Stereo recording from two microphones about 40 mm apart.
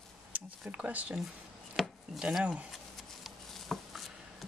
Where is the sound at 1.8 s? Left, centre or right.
Centre.